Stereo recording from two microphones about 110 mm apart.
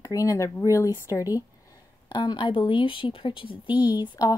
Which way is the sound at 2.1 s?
45° left (ahead or behind).